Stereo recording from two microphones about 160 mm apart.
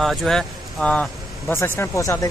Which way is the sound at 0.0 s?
Centre (ahead or behind).